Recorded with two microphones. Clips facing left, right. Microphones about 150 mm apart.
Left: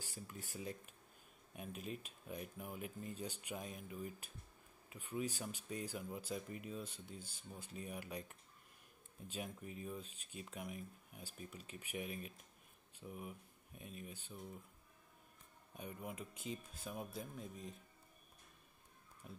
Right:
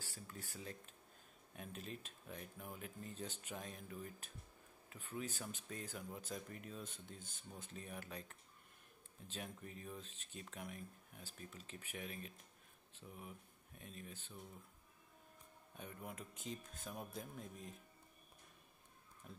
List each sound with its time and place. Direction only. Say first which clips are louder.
0.0 s speech: left 2 dB; 15° left (ahead or behind)
15.8 s speech: left 3 dB; 5° left (ahead or behind)
19.2 s speech: left 2 dB; 5° left (ahead or behind)